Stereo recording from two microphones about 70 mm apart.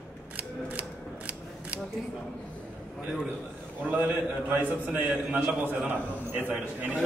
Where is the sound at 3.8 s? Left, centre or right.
Right.